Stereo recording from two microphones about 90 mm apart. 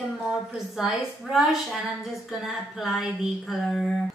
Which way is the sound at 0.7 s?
Centre (ahead or behind).